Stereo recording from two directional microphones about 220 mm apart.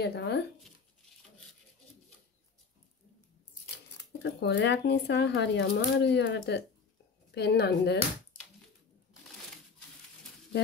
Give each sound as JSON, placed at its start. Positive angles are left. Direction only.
{"t": 0.0, "sound": "speech", "side_deg": 50}
{"t": 3.7, "sound": "speech", "side_deg": 50}